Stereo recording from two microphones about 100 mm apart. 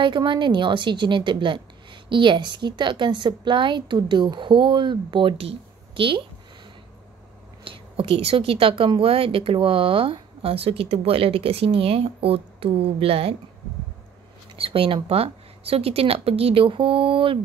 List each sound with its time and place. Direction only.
0.0 s a woman's voice: 50° right (ahead or behind)
5.4 s a woman's voice: 70° right (ahead or behind)
7.6 s a woman's voice: 65° right (ahead or behind)
14.5 s a sound: 65° right (ahead or behind)
15.0 s a woman's voice: 80° right; by 17.4 s 65° right (ahead or behind)